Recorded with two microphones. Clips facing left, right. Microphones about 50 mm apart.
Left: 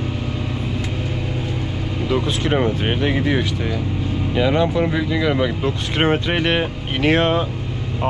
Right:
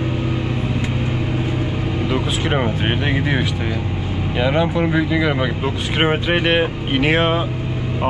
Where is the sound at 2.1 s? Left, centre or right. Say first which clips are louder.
Left 2 dB; centre.